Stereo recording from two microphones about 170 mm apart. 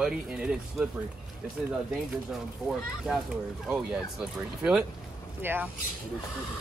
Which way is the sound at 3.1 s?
5° right (ahead or behind).